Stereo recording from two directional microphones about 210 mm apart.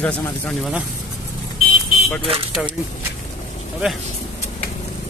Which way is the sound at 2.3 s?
25° right (ahead or behind).